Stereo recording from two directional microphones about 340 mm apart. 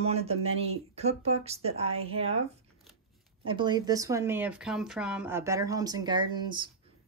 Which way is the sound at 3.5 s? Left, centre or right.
Centre.